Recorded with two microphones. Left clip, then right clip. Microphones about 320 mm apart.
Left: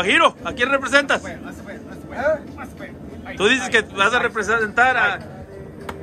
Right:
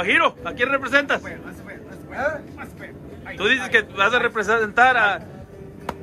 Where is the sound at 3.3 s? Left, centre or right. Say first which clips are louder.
Left 1 dB; centre.